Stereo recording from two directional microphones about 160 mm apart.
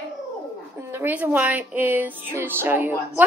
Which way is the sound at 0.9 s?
10° right (ahead or behind).